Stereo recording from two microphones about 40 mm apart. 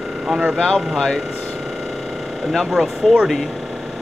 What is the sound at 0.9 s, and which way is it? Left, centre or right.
Speech, centre.